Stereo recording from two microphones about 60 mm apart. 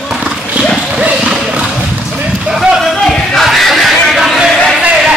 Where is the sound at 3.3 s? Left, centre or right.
Centre.